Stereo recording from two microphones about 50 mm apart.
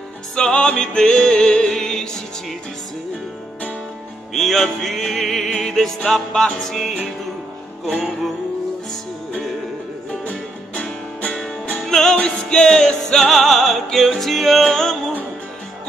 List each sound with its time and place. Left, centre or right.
0.4 s music: centre
4.3 s music: centre
10.2 s music: left
11.8 s music: centre